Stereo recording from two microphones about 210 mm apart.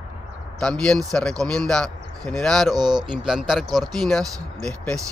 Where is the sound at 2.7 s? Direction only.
20° right (ahead or behind).